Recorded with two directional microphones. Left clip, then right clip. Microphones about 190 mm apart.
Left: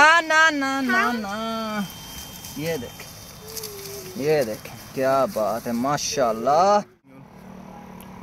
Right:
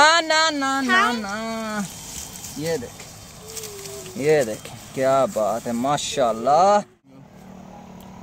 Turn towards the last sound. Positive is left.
turn(degrees=-5)  # may be behind; listen again after turning